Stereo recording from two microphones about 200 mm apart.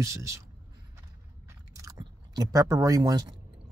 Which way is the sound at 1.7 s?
15° right (ahead or behind).